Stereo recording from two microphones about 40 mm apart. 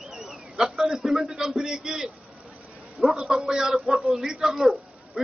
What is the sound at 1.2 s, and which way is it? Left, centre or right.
A man's voice, centre.